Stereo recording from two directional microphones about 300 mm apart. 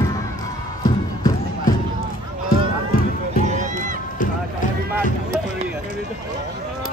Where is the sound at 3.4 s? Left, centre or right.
Right.